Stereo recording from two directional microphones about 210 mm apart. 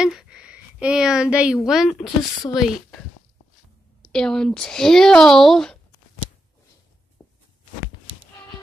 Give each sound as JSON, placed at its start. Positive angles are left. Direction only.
{"t": 0.0, "sound": "a woman's voice", "side_deg": -5}
{"t": 4.1, "sound": "speech", "side_deg": 5}